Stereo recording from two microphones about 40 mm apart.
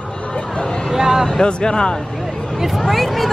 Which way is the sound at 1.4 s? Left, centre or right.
Left.